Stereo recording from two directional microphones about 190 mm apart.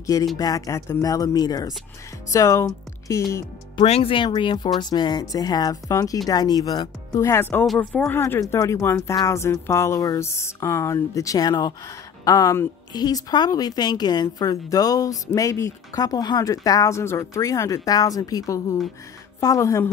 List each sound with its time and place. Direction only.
0.0 s a woman's voice: 20° left (ahead or behind)
3.3 s a woman's voice: 30° left (ahead or behind)